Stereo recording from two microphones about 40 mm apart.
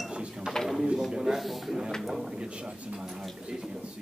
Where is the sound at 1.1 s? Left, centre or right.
Centre.